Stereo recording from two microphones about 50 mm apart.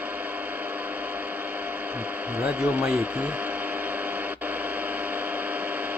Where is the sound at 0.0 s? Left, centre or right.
Right.